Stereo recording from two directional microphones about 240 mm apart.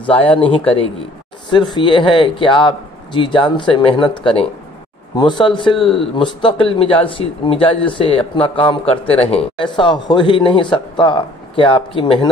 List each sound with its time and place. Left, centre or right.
0.0 s speech: left